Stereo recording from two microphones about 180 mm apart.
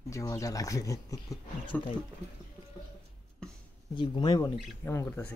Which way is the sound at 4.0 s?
25° left (ahead or behind).